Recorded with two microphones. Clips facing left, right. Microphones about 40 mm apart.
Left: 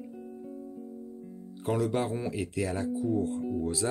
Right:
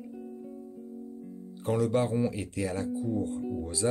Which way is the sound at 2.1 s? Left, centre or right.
Left.